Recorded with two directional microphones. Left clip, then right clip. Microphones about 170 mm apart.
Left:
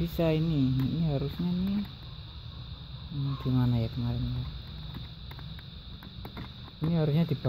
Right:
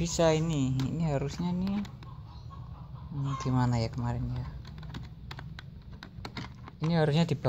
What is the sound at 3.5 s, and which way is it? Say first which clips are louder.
Speech: even; centre (ahead or behind).